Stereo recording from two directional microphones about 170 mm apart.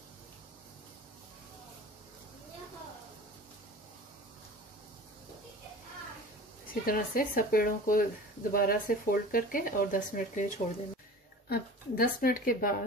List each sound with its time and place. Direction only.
6.7 s speech: 55° left (ahead or behind)
11.4 s speech: 65° left (ahead or behind)